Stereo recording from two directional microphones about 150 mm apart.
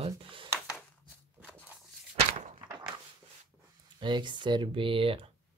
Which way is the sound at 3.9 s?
30° right (ahead or behind).